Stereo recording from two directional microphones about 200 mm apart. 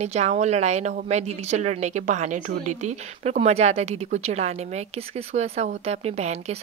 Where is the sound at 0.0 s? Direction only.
35° right (ahead or behind).